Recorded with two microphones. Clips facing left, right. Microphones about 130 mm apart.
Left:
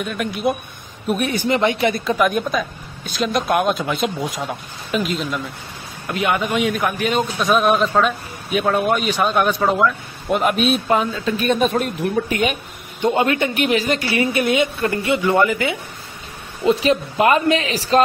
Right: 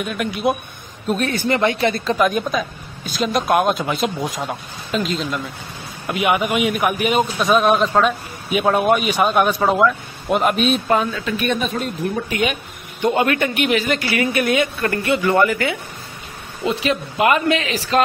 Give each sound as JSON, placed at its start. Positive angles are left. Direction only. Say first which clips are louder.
{"t": 0.0, "sound": "a man's voice", "louder": "right 1 dB", "side_deg": 0}
{"t": 1.0, "sound": "speech", "louder": "even", "side_deg": 15}
{"t": 2.1, "sound": "a man's voice", "louder": "even", "side_deg": 0}
{"t": 6.0, "sound": "speech", "louder": "right 2 dB", "side_deg": -15}
{"t": 7.3, "sound": "a man's voice", "louder": "even", "side_deg": 0}
{"t": 10.9, "sound": "speech", "louder": "even", "side_deg": 15}
{"t": 11.3, "sound": "speech", "louder": "left 4 dB", "side_deg": 40}
{"t": 13.0, "sound": "a woman's voice", "louder": "even", "side_deg": 25}
{"t": 13.6, "sound": "a woman's voice", "louder": "even", "side_deg": 35}
{"t": 16.8, "sound": "speech", "louder": "left 2 dB", "side_deg": 35}